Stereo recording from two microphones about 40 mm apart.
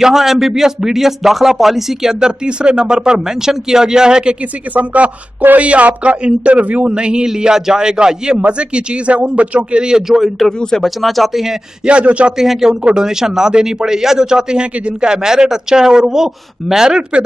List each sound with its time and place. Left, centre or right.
0.0 s speech: centre
2.1 s speech: right
4.7 s speech: right; by 10.3 s centre
10.8 s speech: centre
11.8 s speech: right
12.4 s speech: centre